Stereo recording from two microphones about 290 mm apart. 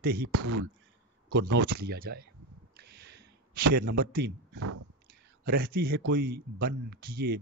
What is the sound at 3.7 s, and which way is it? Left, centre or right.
Speech, right.